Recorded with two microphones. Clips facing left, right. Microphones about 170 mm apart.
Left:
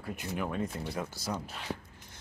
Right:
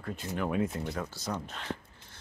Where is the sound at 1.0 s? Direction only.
10° left (ahead or behind).